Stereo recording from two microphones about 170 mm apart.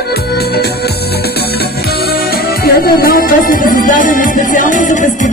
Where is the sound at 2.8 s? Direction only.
55° left (ahead or behind).